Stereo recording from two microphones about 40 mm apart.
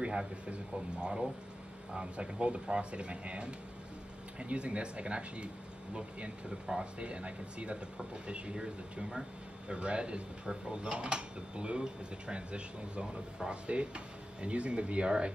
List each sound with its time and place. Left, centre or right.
0.0 s speech: centre